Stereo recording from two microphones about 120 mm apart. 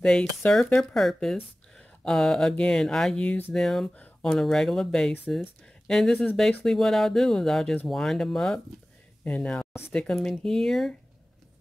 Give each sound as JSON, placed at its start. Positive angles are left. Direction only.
{"t": 0.0, "sound": "speech", "side_deg": 5}
{"t": 3.5, "sound": "speech", "side_deg": 5}
{"t": 9.7, "sound": "a sound", "side_deg": 20}
{"t": 9.9, "sound": "speech", "side_deg": 5}